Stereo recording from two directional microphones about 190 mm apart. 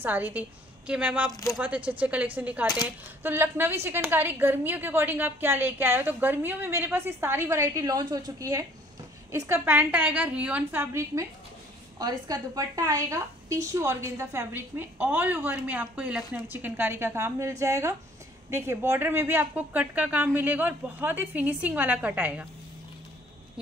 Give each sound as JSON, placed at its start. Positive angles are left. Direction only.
{"t": 0.0, "sound": "a woman's voice", "side_deg": -10}
{"t": 1.3, "sound": "speech", "side_deg": 15}
{"t": 1.9, "sound": "a woman's voice", "side_deg": -5}